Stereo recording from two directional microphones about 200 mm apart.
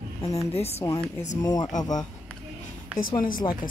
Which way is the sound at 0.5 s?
30° left (ahead or behind).